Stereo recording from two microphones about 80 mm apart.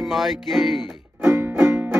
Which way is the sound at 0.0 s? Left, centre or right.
Centre.